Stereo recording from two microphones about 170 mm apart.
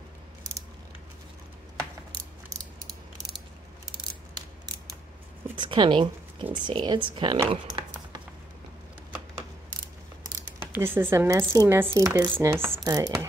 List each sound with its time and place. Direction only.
5.6 s speech: 30° right (ahead or behind)
10.7 s speech: 15° right (ahead or behind)